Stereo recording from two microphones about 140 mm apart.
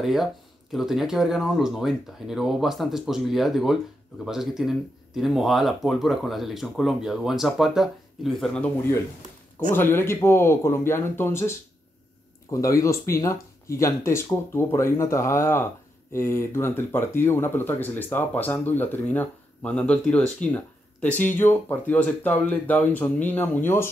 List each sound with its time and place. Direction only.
0.0 s speech: centre (ahead or behind)
9.7 s speech: 15° left (ahead or behind)